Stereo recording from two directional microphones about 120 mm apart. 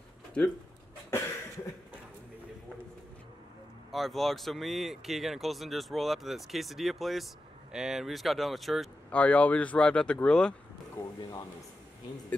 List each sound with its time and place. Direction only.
0.4 s speech: 10° left (ahead or behind)
3.9 s speech: centre (ahead or behind)
9.1 s speech: 10° left (ahead or behind)
11.1 s speech: 35° left (ahead or behind)